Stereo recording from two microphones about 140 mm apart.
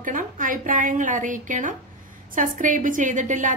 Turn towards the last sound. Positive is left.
turn(degrees=-65)  # may be behind; listen again after turning